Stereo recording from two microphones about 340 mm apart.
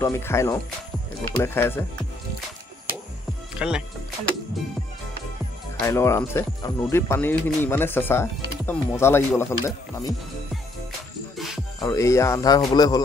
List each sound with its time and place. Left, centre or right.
0.0 s speech: centre
3.5 s speech: centre
5.8 s speech: centre
11.3 s music: centre
11.8 s speech: centre